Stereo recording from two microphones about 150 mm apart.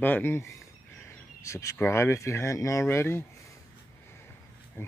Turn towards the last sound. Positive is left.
turn(degrees=15)  # may be behind; listen again after turning